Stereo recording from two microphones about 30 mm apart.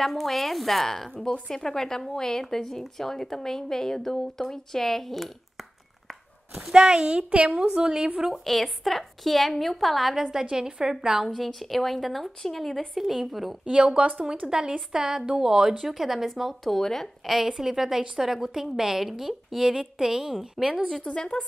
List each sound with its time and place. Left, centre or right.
0.0 s a woman's voice: centre
6.7 s a woman's voice: right
7.2 s a woman's voice: right
7.6 s a woman's voice: right
8.5 s a woman's voice: centre
10.6 s a woman's voice: centre
11.2 s a woman's voice: centre
13.7 s a woman's voice: right
14.5 s a woman's voice: right
15.8 s a woman's voice: centre
16.6 s a woman's voice: centre
17.5 s a woman's voice: centre
21.0 s a woman's voice: left